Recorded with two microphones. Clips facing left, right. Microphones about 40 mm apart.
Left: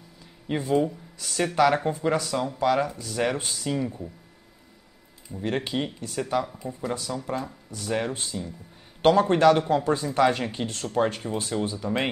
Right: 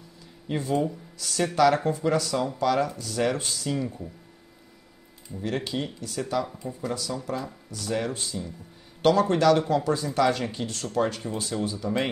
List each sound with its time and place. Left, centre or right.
0.5 s speech: centre
5.4 s speech: left
6.6 s speech: centre
6.9 s speech: left